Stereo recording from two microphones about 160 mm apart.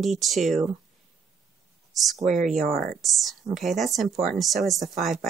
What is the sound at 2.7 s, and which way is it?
Speech, 65° right (ahead or behind).